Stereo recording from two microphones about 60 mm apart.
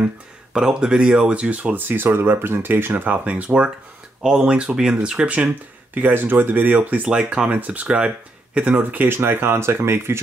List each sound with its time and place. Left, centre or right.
0.5 s speech: centre
5.9 s speech: right
7.1 s speech: centre; by 10.2 s right